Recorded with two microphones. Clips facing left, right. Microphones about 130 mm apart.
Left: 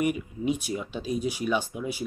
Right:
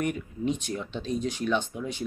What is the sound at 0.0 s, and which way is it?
Speech, 10° left (ahead or behind).